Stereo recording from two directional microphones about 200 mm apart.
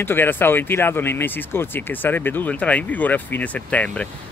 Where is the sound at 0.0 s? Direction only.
10° left (ahead or behind).